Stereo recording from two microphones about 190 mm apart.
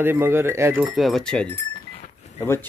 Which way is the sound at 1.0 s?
Centre (ahead or behind).